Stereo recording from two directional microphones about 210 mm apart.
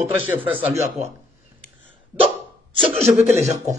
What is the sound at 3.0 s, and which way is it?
Speech, 10° right (ahead or behind).